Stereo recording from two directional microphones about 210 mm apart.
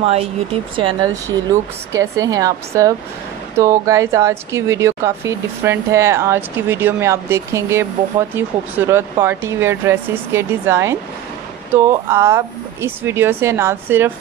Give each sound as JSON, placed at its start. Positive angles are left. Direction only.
{"t": 0.0, "sound": "speech", "side_deg": -30}